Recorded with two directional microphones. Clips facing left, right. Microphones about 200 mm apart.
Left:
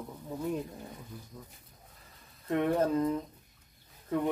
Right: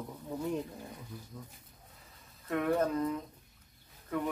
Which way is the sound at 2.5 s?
30° left (ahead or behind).